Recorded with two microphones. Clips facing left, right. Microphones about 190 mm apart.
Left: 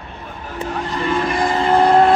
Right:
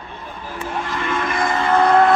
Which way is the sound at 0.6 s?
35° left (ahead or behind).